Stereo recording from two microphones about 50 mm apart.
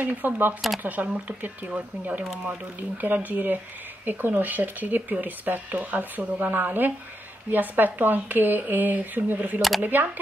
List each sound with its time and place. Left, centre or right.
0.0 s speech: right